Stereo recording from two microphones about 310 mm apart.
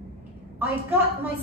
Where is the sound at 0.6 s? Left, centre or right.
Centre.